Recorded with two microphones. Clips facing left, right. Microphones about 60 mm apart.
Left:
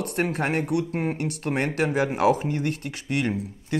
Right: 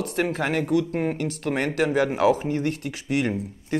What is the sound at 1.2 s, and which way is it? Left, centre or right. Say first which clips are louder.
Speech: right 1 dB; left.